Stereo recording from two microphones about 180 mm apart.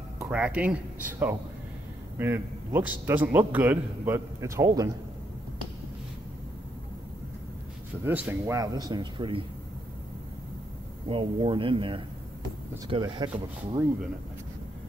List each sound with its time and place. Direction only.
0.2 s a man's voice: 5° right (ahead or behind)
8.0 s speech: 10° right (ahead or behind)
11.1 s speech: 30° right (ahead or behind)